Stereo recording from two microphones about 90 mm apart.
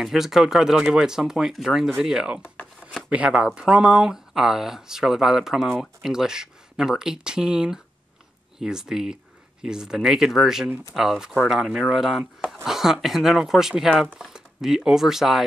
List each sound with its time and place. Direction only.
0.0 s speech: 5° right (ahead or behind)
2.4 s a sound: 20° left (ahead or behind)
3.1 s speech: 10° right (ahead or behind)